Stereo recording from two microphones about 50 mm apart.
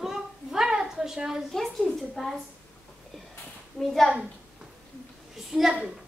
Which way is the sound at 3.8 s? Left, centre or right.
Centre.